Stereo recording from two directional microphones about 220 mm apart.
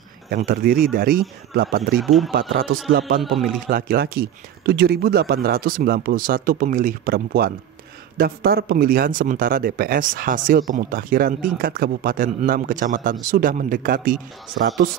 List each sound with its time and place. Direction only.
0.3 s speech: 40° right (ahead or behind)
2.0 s a man's voice: centre (ahead or behind)
3.3 s a man's voice: centre (ahead or behind)
3.6 s speech: 40° right (ahead or behind)